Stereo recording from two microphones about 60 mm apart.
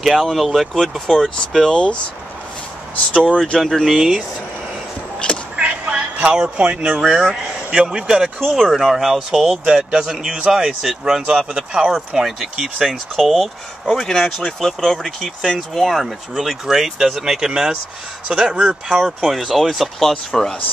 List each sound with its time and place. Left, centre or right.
0.0 s speech: centre
3.6 s speech: centre
5.6 s a sound: right
7.0 s a man's voice: centre
8.4 s speech: centre